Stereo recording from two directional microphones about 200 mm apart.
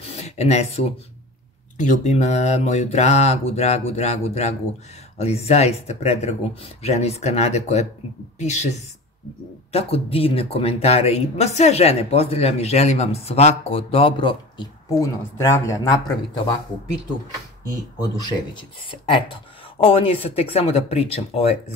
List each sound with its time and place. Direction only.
0.0 s a sound: 30° left (ahead or behind)
1.8 s speech: 35° left (ahead or behind); by 16.0 s 15° left (ahead or behind)
18.1 s speech: 25° left (ahead or behind)